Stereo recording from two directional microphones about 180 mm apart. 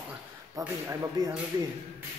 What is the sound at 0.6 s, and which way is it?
Speech, 15° right (ahead or behind).